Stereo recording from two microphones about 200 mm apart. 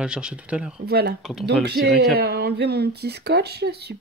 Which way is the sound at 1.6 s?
55° right (ahead or behind).